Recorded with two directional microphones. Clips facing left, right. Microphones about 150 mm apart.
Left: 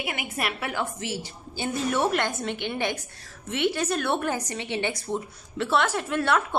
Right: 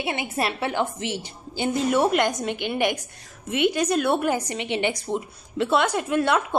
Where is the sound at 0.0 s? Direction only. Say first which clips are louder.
Right 5 dB; 30° right (ahead or behind).